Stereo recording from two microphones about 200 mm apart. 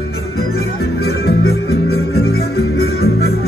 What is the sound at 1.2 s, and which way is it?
Music, 55° left (ahead or behind).